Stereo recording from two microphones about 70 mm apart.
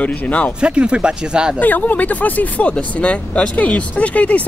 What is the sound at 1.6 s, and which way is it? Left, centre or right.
Speech, left.